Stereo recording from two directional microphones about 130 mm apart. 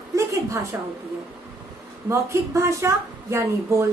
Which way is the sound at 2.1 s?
20° right (ahead or behind).